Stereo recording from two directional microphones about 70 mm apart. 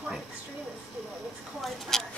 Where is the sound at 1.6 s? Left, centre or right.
Centre.